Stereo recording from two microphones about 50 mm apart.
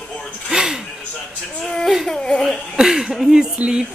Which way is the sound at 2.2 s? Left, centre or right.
Centre.